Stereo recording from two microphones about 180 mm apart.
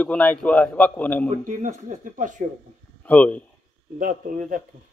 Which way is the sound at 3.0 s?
10° left (ahead or behind).